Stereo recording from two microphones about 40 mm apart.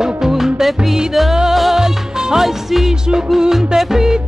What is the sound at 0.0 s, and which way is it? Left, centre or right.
Music, centre.